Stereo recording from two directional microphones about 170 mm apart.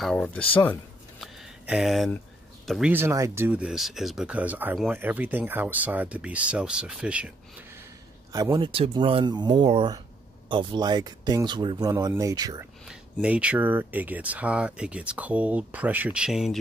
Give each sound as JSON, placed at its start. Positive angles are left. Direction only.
{"t": 0.0, "sound": "speech", "side_deg": 5}
{"t": 1.2, "sound": "a sound", "side_deg": 0}
{"t": 2.6, "sound": "speech", "side_deg": 0}
{"t": 2.9, "sound": "speech", "side_deg": -15}
{"t": 8.3, "sound": "speech", "side_deg": -20}
{"t": 12.8, "sound": "speech", "side_deg": -5}